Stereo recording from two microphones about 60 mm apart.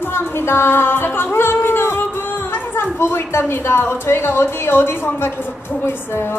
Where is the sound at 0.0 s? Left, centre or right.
Left.